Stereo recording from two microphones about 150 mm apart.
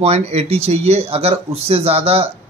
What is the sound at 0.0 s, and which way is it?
A man's voice, 45° right (ahead or behind).